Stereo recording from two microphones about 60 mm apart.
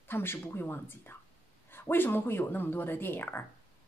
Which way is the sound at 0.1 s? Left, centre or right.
Left.